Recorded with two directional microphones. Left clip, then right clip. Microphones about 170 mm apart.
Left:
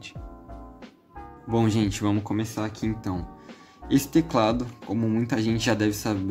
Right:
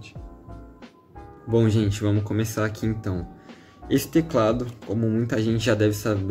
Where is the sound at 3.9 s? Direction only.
25° left (ahead or behind).